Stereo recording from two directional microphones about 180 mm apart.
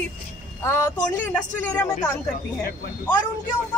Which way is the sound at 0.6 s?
15° left (ahead or behind).